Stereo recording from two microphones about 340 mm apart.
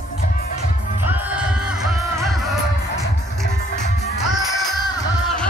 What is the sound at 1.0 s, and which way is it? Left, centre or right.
Music, centre.